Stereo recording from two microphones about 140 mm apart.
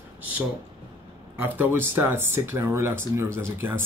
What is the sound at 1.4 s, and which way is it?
Speech, 15° right (ahead or behind).